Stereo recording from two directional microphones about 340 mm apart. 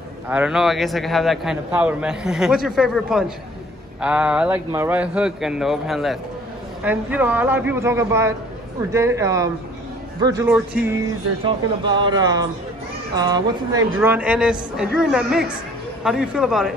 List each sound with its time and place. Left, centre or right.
0.3 s a man's voice: centre